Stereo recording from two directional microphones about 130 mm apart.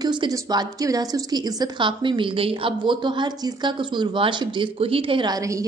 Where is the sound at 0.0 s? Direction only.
35° right (ahead or behind).